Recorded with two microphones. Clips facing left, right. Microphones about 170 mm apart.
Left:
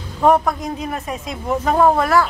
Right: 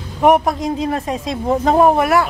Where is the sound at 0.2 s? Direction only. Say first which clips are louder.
Right 2 dB; 20° right (ahead or behind).